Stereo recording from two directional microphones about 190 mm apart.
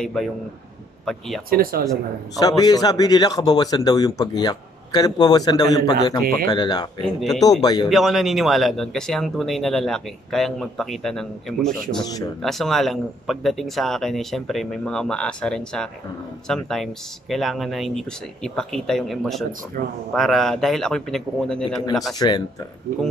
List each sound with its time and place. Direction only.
0.0 s speech: 5° left (ahead or behind)
1.5 s speech: 50° right (ahead or behind)
2.3 s a man's voice: 20° left (ahead or behind)
7.0 s speech: centre (ahead or behind)
7.6 s a man's voice: 20° left (ahead or behind)
7.9 s speech: centre (ahead or behind)
19.8 s speech: 50° right (ahead or behind)
20.1 s speech: centre (ahead or behind)
22.2 s a man's voice: 20° left (ahead or behind)